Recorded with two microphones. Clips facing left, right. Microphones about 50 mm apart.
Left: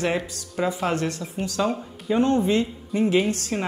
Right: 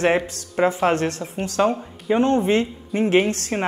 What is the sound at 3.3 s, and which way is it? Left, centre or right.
Speech, right.